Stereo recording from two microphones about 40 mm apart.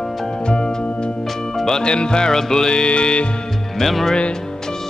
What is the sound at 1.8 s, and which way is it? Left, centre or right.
Music, left.